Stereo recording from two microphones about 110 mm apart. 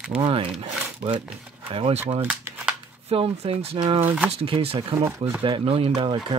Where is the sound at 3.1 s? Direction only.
60° right (ahead or behind).